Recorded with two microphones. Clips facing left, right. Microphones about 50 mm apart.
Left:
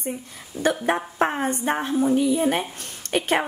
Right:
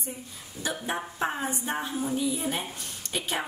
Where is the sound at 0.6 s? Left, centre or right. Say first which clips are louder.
Left 9 dB; left.